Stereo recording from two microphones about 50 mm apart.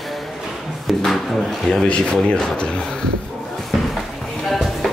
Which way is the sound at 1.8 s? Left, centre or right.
Centre.